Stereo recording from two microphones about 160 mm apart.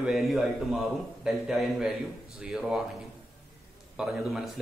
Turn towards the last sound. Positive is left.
turn(degrees=0)  # may be behind; listen again after turning